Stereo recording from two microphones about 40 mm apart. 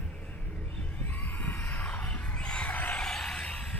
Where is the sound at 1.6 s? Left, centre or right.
Left.